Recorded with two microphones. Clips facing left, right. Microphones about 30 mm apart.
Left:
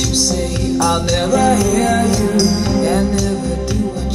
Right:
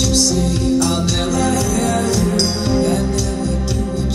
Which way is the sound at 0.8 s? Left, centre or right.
Centre.